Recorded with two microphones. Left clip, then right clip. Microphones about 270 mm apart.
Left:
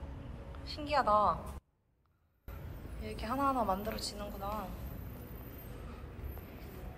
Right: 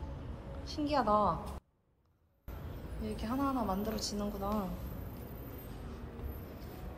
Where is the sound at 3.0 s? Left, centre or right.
Centre.